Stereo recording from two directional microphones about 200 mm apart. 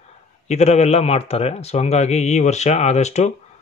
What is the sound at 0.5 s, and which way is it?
Speech, 35° left (ahead or behind).